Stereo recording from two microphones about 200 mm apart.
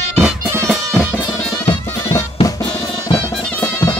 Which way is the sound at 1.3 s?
15° left (ahead or behind).